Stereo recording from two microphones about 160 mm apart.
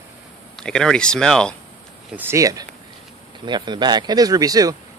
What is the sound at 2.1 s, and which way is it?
A man's voice, 15° right (ahead or behind).